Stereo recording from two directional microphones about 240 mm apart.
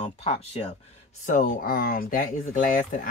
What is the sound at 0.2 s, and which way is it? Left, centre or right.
Speech, left.